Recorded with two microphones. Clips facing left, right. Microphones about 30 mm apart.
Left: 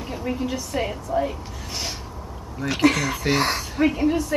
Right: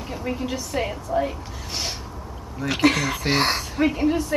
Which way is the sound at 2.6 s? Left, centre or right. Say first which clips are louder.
Even; centre.